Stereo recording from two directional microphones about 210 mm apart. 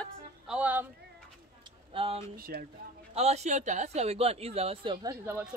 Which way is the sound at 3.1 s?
30° right (ahead or behind).